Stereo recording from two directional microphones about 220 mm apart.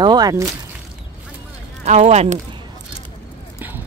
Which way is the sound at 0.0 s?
20° right (ahead or behind).